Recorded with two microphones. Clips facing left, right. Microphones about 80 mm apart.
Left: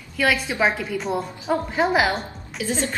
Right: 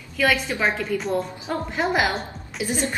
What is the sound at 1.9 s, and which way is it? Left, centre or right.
Speech, centre.